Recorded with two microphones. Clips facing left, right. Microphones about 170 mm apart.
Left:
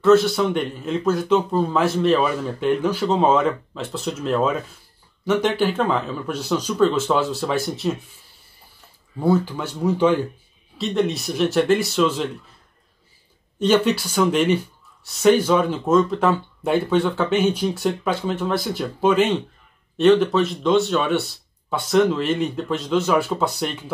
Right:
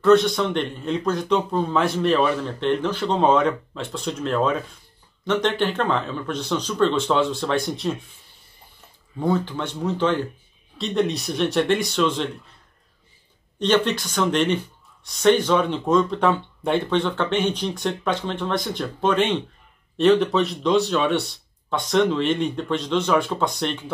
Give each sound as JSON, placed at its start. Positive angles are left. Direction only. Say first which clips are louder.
{"t": 0.0, "sound": "a man's voice", "louder": "left 1 dB", "side_deg": 5}
{"t": 9.2, "sound": "a man's voice", "louder": "left 3 dB", "side_deg": 10}
{"t": 13.6, "sound": "a man's voice", "louder": "left 2 dB", "side_deg": 10}